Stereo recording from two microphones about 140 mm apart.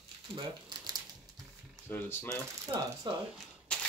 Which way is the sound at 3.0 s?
35° right (ahead or behind).